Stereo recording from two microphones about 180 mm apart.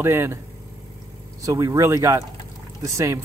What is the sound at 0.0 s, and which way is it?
Speech, 15° right (ahead or behind).